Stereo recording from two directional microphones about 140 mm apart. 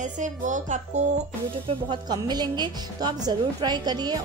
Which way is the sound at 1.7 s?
30° right (ahead or behind).